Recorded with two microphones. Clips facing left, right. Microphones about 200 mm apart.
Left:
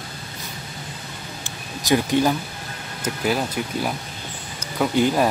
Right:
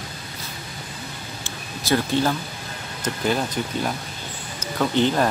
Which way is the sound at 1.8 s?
15° left (ahead or behind).